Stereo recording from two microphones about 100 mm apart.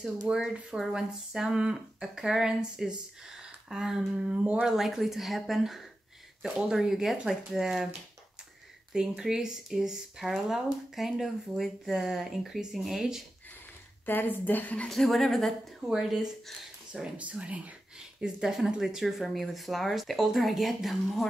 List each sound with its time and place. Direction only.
0.3 s speech: 5° right (ahead or behind)
8.9 s speech: 5° right (ahead or behind)
14.0 s a woman's voice: 20° left (ahead or behind)
14.9 s speech: centre (ahead or behind)